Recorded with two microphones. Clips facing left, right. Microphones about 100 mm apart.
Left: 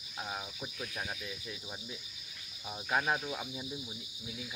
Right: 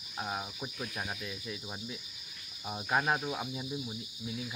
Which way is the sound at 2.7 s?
15° right (ahead or behind).